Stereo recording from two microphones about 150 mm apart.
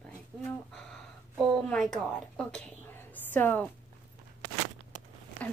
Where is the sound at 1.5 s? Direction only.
Centre (ahead or behind).